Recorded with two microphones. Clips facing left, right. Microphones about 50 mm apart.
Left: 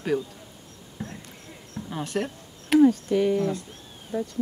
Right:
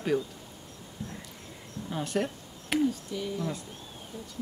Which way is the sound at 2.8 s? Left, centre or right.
Left.